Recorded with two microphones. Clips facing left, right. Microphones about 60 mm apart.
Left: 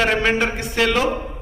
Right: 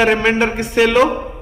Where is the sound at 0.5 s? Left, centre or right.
Centre.